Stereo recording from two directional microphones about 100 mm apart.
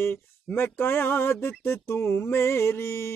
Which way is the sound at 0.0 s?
20° left (ahead or behind).